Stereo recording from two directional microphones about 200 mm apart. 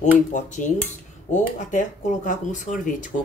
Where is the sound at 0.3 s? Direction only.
40° left (ahead or behind).